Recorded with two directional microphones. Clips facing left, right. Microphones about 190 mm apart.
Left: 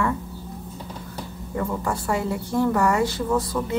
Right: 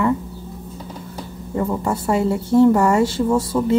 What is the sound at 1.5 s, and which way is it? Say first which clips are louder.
A woman's voice: right 5 dB; 25° right (ahead or behind).